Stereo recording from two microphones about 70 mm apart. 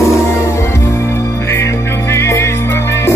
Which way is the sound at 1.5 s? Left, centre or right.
Left.